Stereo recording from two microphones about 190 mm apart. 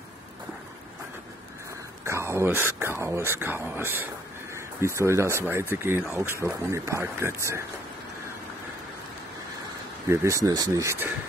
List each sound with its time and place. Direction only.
2.0 s speech: 15° right (ahead or behind)
10.0 s speech: 15° right (ahead or behind)